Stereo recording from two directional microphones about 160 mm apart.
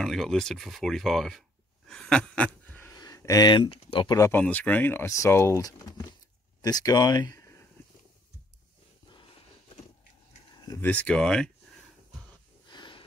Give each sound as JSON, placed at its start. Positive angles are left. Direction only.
{"t": 0.0, "sound": "speech", "side_deg": 0}
{"t": 1.9, "sound": "a sound", "side_deg": 5}
{"t": 3.0, "sound": "speech", "side_deg": 20}
{"t": 4.2, "sound": "speech", "side_deg": 10}
{"t": 10.8, "sound": "speech", "side_deg": 10}
{"t": 12.6, "sound": "snort", "side_deg": 30}